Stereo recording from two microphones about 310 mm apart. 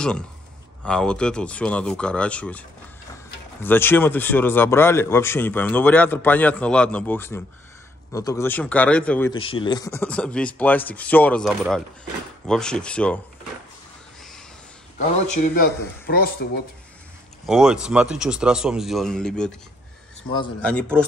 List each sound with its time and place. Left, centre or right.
0.8 s speech: centre
3.6 s speech: centre
9.4 s speech: centre
15.3 s speech: left
17.5 s speech: centre